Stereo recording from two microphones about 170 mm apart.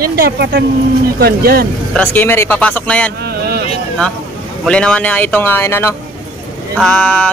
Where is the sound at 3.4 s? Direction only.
70° right (ahead or behind).